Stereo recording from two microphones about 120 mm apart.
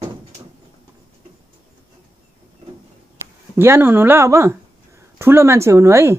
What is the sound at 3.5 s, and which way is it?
A woman's voice, 20° right (ahead or behind).